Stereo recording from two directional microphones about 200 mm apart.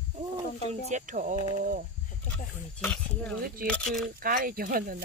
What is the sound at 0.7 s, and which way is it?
Speech, 35° right (ahead or behind).